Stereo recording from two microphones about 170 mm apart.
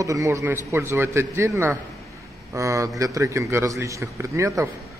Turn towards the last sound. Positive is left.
turn(degrees=-15)  # may be behind; listen again after turning